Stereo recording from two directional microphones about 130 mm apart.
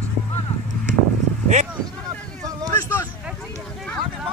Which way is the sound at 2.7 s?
20° left (ahead or behind).